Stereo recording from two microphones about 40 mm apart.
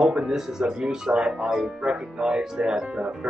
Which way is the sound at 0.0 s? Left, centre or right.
Centre.